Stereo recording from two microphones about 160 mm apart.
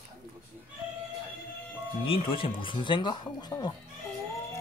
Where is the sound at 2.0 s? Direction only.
35° left (ahead or behind).